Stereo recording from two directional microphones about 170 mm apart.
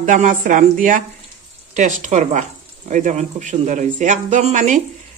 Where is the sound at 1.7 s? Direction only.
45° right (ahead or behind).